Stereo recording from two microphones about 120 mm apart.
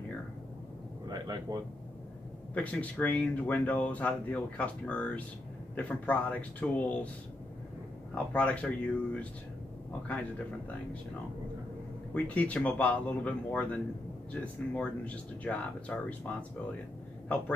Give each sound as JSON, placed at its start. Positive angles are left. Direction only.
{"t": 1.0, "sound": "a sound", "side_deg": -30}
{"t": 2.5, "sound": "speech", "side_deg": 10}
{"t": 8.1, "sound": "speech", "side_deg": 10}
{"t": 12.1, "sound": "speech", "side_deg": 10}